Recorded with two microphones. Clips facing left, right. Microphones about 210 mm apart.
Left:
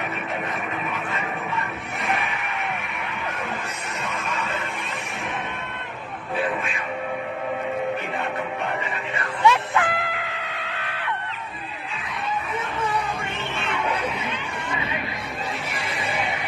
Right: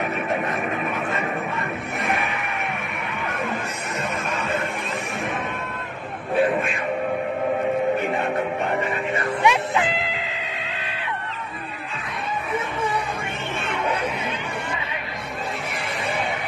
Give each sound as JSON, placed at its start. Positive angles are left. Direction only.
{"t": 9.4, "sound": "music", "side_deg": -15}